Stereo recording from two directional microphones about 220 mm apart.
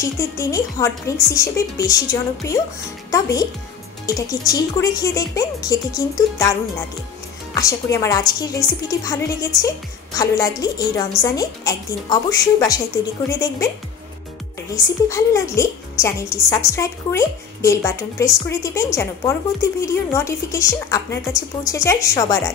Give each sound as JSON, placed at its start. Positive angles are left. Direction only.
{"t": 0.0, "sound": "a woman's voice", "side_deg": 15}
{"t": 7.5, "sound": "a woman's voice", "side_deg": 15}
{"t": 15.0, "sound": "a woman's voice", "side_deg": 15}